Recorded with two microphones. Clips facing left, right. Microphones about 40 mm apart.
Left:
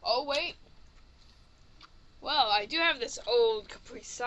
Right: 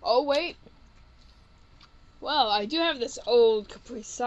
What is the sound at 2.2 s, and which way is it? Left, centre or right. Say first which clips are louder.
Speech: right 3 dB; centre.